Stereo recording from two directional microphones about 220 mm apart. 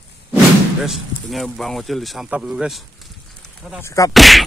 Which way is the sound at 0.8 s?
Centre (ahead or behind).